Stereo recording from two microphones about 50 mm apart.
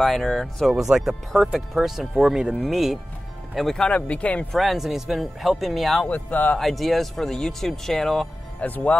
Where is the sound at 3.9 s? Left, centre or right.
Left.